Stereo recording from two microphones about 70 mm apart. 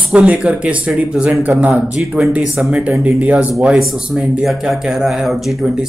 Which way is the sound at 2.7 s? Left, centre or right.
Centre.